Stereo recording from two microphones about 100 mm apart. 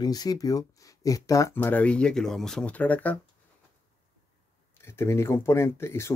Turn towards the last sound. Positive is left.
turn(degrees=25)  # may be behind; listen again after turning